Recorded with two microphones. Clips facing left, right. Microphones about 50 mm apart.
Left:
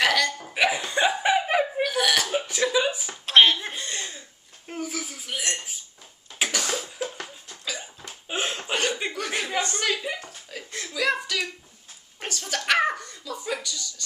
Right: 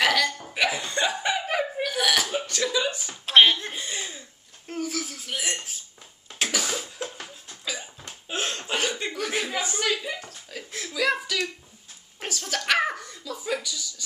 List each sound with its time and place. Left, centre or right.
0.0 s hiccup: centre
1.8 s burping: centre
2.3 s chuckle: centre
3.8 s cough: centre
4.6 s a sound: centre
6.8 s cough: centre
7.6 s a sound: centre
8.1 s chuckle: centre
12.2 s a sound: centre